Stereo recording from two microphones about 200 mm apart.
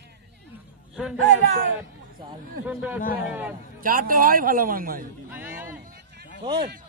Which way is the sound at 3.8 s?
45° right (ahead or behind).